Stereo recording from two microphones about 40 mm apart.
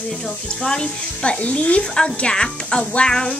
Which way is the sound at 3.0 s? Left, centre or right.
Centre.